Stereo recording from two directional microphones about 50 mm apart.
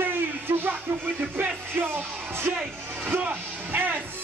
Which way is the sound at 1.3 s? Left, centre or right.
Right.